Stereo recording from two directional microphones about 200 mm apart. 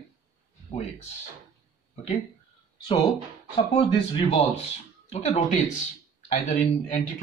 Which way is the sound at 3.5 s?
30° left (ahead or behind).